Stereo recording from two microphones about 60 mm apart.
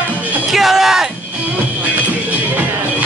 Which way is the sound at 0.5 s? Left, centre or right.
Centre.